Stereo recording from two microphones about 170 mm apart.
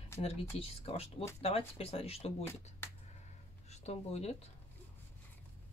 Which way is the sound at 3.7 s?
40° left (ahead or behind).